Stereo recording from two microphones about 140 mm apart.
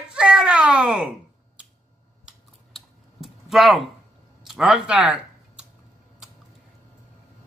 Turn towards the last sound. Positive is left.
turn(degrees=-10)  # may be behind; listen again after turning